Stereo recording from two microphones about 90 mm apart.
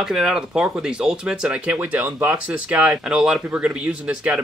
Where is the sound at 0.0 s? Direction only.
5° right (ahead or behind).